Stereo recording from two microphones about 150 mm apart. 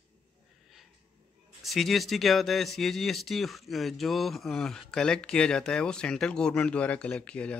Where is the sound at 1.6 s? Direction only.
Centre (ahead or behind).